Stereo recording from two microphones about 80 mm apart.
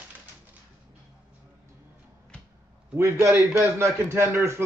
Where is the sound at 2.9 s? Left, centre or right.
Right.